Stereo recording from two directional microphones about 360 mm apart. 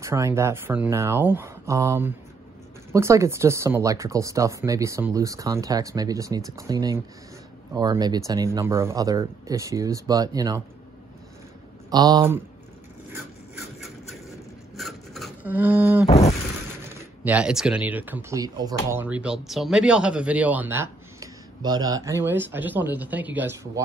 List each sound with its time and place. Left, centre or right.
0.0 s speech: centre
11.9 s speech: centre
13.8 s vehicle: centre
14.8 s a sound: centre
16.1 s a sound: centre
17.2 s speech: centre